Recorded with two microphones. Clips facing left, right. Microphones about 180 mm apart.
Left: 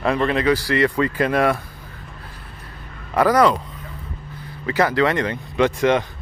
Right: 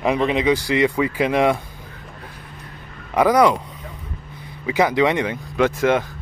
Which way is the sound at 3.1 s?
10° right (ahead or behind).